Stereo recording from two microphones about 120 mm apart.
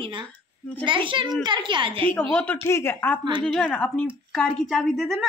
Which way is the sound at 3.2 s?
40° right (ahead or behind).